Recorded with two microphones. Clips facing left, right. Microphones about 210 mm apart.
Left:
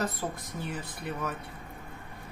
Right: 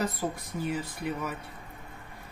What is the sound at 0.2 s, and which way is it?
Speech, 15° right (ahead or behind).